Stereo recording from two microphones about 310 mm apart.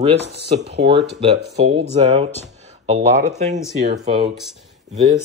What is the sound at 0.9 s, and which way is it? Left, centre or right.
Speech, centre.